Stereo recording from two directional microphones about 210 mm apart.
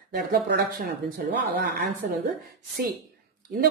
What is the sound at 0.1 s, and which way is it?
Speech, 50° right (ahead or behind).